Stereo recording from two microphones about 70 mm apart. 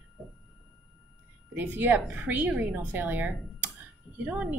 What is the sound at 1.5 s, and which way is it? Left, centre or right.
A woman's voice, right.